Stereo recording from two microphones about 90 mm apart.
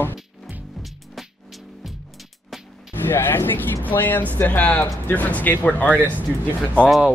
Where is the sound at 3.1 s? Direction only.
25° left (ahead or behind).